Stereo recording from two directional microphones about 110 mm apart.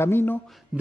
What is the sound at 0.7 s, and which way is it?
Speech, 5° right (ahead or behind).